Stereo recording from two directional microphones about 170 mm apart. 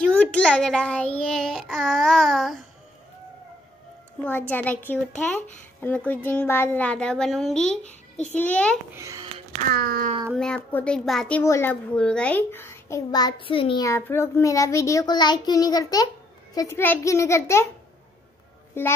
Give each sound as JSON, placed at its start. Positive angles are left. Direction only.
{"t": 0.0, "sound": "a child's voice", "side_deg": 5}
{"t": 4.2, "sound": "speech", "side_deg": 10}
{"t": 7.8, "sound": "a child's voice", "side_deg": 40}
{"t": 8.4, "sound": "speech", "side_deg": 10}
{"t": 8.9, "sound": "a child's voice", "side_deg": -20}
{"t": 9.7, "sound": "speech", "side_deg": -60}
{"t": 10.3, "sound": "speech", "side_deg": 5}
{"t": 11.4, "sound": "speech", "side_deg": 15}
{"t": 13.8, "sound": "a child's voice", "side_deg": 15}
{"t": 18.8, "sound": "speech", "side_deg": 15}